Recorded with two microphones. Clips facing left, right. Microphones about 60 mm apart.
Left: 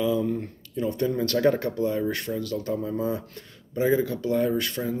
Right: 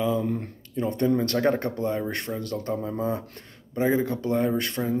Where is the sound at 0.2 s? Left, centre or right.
Right.